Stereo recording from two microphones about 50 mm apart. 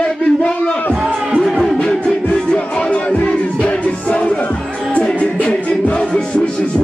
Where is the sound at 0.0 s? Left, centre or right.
Left.